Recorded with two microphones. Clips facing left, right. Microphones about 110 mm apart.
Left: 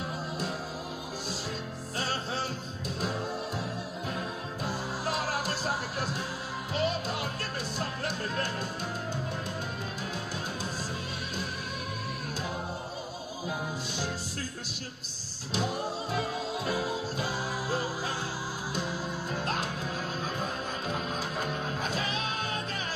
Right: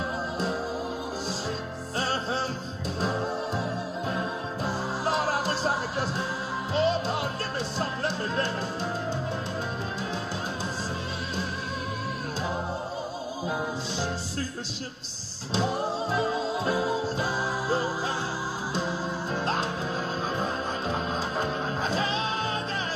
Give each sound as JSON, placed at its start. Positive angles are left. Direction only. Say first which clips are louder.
{"t": 2.0, "sound": "music", "louder": "right 5 dB", "side_deg": -35}
{"t": 4.6, "sound": "music", "louder": "right 5 dB", "side_deg": -35}
{"t": 15.5, "sound": "music", "louder": "right 4 dB", "side_deg": -30}
{"t": 20.9, "sound": "music", "louder": "right 4 dB", "side_deg": -30}